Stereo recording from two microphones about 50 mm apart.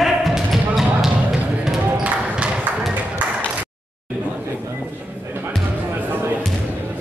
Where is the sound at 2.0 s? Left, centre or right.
Right.